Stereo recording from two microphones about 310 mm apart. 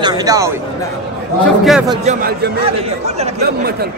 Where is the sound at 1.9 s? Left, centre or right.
Right.